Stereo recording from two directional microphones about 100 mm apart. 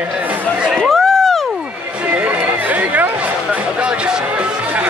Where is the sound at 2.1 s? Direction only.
15° right (ahead or behind).